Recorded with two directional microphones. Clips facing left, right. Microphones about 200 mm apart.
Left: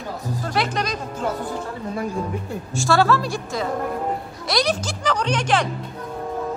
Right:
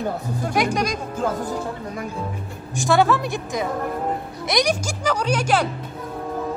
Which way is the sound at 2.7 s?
20° right (ahead or behind).